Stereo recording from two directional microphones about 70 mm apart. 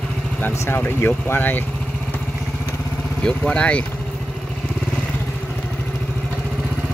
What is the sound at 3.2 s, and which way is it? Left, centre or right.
Speech, centre.